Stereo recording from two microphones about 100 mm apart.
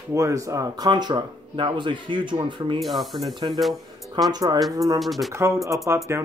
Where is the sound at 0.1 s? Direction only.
30° right (ahead or behind); by 2.8 s 50° right (ahead or behind).